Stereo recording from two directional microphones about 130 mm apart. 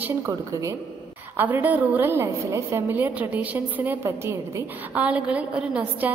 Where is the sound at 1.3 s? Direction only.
15° right (ahead or behind).